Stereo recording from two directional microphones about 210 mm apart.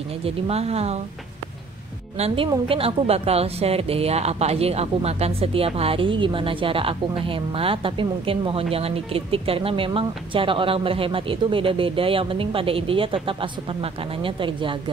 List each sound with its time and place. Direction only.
0.2 s a woman's voice: 30° right (ahead or behind)
2.1 s a woman's voice: 25° right (ahead or behind)